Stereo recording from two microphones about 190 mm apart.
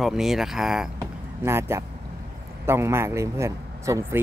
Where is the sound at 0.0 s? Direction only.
Centre (ahead or behind).